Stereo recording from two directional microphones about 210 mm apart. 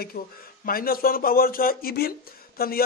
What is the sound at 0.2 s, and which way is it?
Speech, 45° left (ahead or behind).